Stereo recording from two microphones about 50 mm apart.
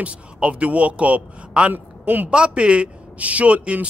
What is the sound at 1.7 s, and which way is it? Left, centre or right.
Speech, right.